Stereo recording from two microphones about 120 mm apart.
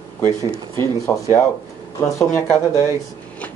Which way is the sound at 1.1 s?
20° left (ahead or behind).